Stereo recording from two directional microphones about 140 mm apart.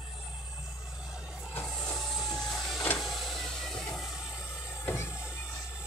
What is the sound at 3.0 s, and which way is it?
Vehicle, centre (ahead or behind).